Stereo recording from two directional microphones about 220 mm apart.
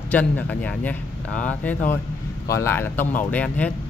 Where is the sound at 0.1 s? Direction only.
5° left (ahead or behind).